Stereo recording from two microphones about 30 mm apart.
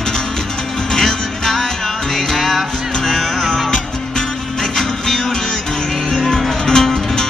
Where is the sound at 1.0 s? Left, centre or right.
Centre.